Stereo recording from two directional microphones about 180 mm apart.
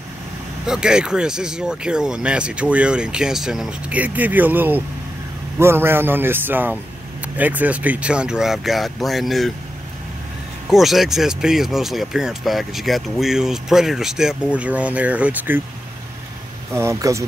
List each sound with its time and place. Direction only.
0.7 s a man's voice: 5° right (ahead or behind)
10.7 s speech: centre (ahead or behind)
16.7 s a man's voice: 15° right (ahead or behind)